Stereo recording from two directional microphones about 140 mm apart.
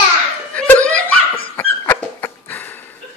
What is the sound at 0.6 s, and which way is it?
Laughter, 10° left (ahead or behind).